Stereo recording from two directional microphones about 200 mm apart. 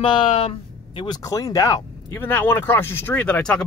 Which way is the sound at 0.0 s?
25° left (ahead or behind).